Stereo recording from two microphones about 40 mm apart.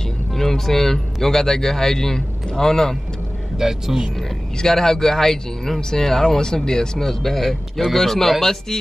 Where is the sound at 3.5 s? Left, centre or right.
Centre.